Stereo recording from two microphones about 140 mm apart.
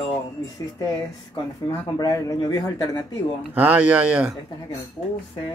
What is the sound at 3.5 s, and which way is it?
Speech, 10° right (ahead or behind).